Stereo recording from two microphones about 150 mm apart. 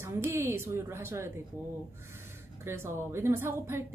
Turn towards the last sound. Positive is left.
turn(degrees=-15)  # may be behind; listen again after turning